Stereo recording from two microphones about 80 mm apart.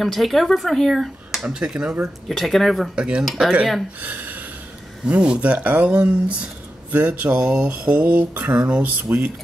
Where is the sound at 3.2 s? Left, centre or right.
Centre.